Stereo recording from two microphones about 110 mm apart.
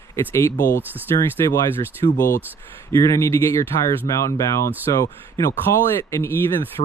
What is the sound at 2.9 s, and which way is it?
Speech, 25° left (ahead or behind).